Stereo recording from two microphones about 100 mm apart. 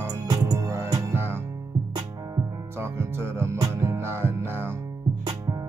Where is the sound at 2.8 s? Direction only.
25° right (ahead or behind).